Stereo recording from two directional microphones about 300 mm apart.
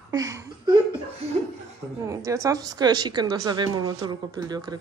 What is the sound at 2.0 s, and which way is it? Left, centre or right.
A woman's voice, centre.